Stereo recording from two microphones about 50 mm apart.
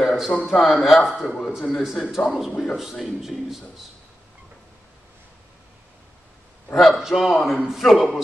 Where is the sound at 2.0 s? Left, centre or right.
Centre.